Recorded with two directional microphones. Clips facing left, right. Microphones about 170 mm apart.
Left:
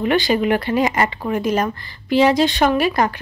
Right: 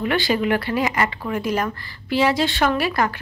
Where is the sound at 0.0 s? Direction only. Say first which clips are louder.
Left 3 dB; 20° left (ahead or behind).